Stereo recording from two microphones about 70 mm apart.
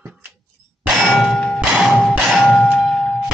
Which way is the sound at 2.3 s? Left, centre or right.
Centre.